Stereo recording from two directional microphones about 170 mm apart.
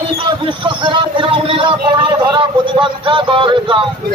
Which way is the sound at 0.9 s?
30° right (ahead or behind).